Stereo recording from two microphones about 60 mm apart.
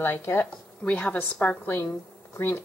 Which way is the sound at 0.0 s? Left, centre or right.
Left.